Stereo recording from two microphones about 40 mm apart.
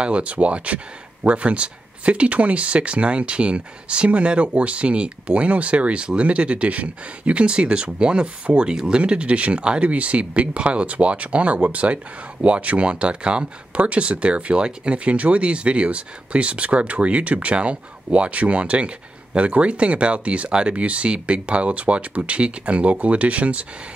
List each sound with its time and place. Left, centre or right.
0.0 s speech: right